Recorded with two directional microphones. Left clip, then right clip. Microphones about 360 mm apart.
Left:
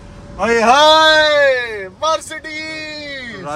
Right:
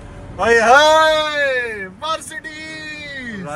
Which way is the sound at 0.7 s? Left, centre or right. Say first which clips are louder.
Left 2 dB; left.